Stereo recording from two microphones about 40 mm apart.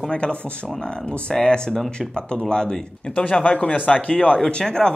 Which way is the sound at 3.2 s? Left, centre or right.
Left.